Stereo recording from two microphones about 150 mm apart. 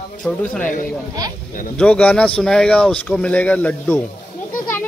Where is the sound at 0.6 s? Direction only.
60° left (ahead or behind).